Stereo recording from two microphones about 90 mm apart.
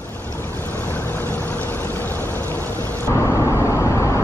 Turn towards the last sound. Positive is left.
turn(degrees=35)  # may be behind; listen again after turning